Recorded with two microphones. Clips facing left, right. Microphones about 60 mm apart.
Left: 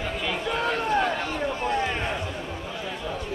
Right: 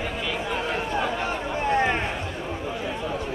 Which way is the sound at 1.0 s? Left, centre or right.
Right.